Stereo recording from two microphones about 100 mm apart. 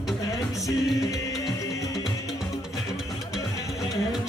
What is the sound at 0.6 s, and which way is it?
Music, 35° left (ahead or behind).